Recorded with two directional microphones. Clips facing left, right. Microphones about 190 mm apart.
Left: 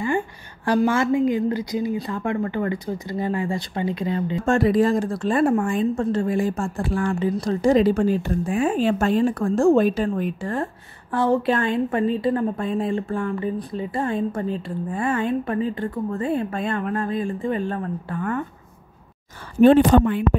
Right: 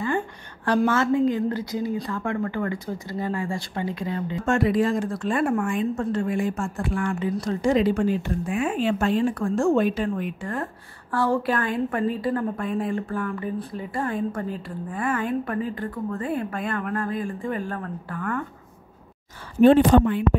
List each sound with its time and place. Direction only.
0.8 s a woman's voice: 10° left (ahead or behind)
4.6 s a woman's voice: 35° left (ahead or behind)
19.6 s speech: 65° left (ahead or behind)